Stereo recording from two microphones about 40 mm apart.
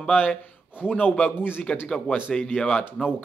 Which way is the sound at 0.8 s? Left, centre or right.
Left.